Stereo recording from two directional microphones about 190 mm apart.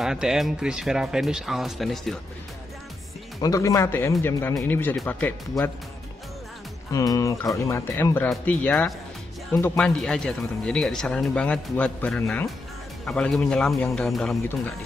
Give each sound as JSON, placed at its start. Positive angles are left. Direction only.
{"t": 0.0, "sound": "speech", "side_deg": -5}
{"t": 3.3, "sound": "speech", "side_deg": 20}
{"t": 6.9, "sound": "speech", "side_deg": 20}